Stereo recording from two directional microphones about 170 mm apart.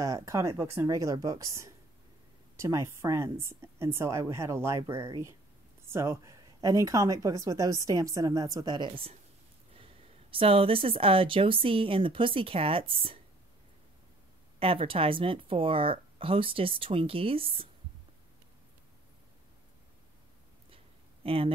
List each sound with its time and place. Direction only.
0.0 s a woman's voice: 20° right (ahead or behind)
10.3 s speech: 35° right (ahead or behind)
14.6 s speech: 35° right (ahead or behind)
20.7 s a sound: 35° right (ahead or behind)